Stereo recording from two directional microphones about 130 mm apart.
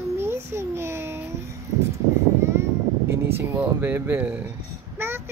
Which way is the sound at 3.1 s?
15° right (ahead or behind).